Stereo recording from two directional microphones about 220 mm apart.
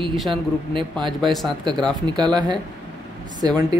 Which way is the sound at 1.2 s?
Centre (ahead or behind).